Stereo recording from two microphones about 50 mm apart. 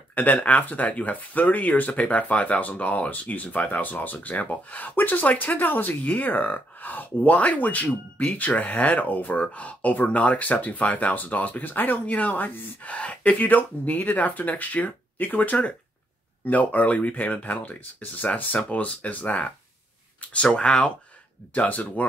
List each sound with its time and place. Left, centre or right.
0.1 s speech: left
5.5 s speech: left
20.4 s speech: centre
21.5 s speech: left